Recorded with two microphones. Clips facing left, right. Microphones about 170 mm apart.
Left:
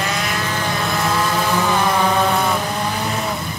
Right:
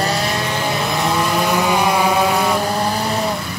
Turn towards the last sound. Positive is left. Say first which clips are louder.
# right 3 dB
turn(degrees=-35)  # may be behind; listen again after turning